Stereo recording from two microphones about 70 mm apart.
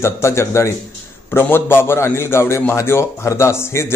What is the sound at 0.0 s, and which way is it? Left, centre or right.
A man's voice, left.